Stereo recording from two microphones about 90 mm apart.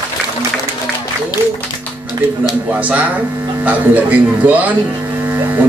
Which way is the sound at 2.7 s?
15° right (ahead or behind).